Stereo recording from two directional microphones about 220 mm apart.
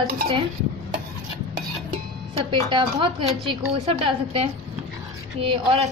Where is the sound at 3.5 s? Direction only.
20° right (ahead or behind).